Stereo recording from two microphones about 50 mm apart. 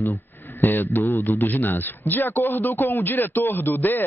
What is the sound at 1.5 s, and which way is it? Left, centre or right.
A man's voice, left.